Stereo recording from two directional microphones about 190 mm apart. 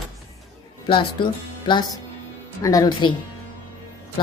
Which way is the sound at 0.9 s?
25° left (ahead or behind).